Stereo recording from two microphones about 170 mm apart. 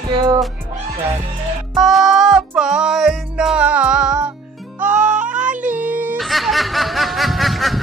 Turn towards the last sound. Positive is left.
turn(degrees=0)  # may be behind; listen again after turning